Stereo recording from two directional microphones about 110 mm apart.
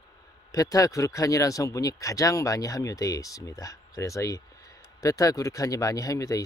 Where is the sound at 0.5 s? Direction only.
30° left (ahead or behind).